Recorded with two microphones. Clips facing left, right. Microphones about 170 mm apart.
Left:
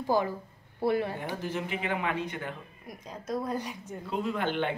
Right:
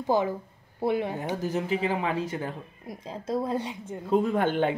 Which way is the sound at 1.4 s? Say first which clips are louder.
Right 8 dB; 35° right (ahead or behind).